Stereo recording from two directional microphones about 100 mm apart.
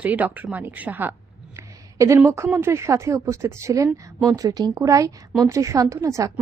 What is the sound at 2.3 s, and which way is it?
A woman's voice, 25° right (ahead or behind).